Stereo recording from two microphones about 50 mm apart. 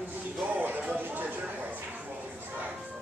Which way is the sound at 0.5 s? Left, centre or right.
Right.